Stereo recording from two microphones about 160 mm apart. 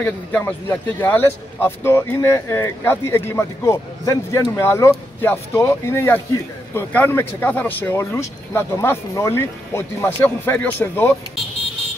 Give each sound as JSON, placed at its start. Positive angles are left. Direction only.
{"t": 0.4, "sound": "a man's voice", "side_deg": 15}